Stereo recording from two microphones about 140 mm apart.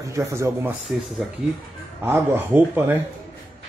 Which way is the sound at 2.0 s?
15° right (ahead or behind).